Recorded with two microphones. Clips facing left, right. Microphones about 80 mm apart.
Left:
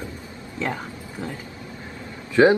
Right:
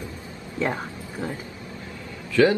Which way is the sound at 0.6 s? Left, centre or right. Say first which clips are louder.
Right 2 dB; centre.